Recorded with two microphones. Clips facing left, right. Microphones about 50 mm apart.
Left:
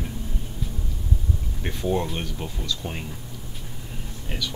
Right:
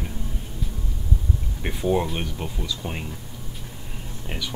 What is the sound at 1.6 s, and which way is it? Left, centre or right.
Speech, centre.